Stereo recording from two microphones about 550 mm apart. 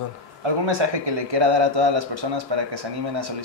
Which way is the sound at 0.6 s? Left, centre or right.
Right.